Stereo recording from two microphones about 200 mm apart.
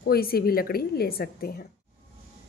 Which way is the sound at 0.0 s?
50° left (ahead or behind).